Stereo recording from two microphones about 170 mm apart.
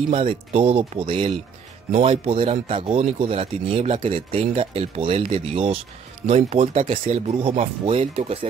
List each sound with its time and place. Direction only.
0.1 s speech: 35° right (ahead or behind)